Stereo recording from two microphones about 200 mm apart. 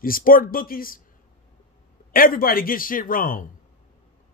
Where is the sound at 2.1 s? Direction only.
45° left (ahead or behind).